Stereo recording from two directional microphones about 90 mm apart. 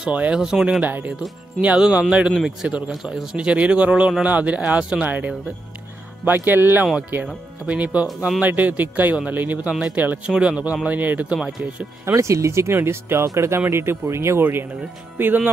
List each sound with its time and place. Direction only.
0.0 s a man's voice: 10° right (ahead or behind)
11.3 s speech: centre (ahead or behind)
12.2 s speech: 35° right (ahead or behind)